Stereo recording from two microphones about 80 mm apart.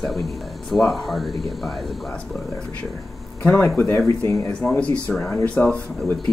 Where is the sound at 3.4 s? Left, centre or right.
Left.